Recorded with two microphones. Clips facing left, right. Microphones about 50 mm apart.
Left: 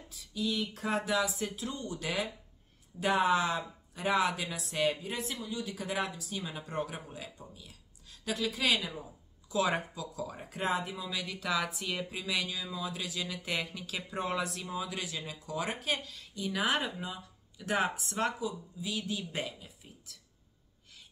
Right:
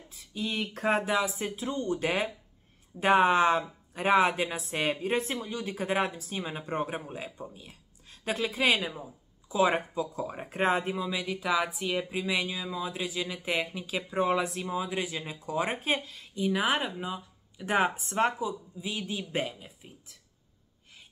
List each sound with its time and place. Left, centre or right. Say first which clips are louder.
0.1 s a woman's voice: even; right
11.1 s speech: right 5 dB; right